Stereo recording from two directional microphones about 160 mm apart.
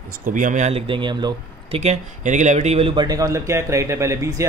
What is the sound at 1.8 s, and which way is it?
Speech, 45° right (ahead or behind).